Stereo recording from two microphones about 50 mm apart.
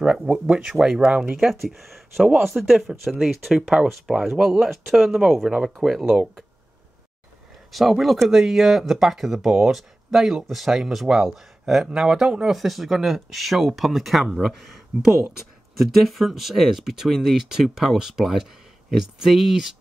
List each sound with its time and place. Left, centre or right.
0.0 s speech: right
1.5 s speech: centre
7.7 s speech: centre